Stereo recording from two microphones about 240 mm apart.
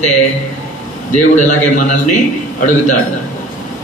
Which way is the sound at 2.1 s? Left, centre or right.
Left.